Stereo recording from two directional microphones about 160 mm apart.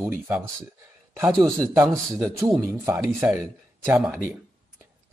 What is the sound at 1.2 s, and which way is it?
Speech, 5° left (ahead or behind).